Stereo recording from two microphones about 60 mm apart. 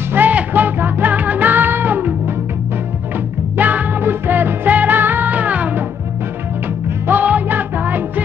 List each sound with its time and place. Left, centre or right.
0.1 s music: right
3.5 s music: right
7.1 s music: right